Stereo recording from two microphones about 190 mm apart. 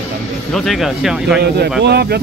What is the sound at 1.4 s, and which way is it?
Speech, 55° right (ahead or behind).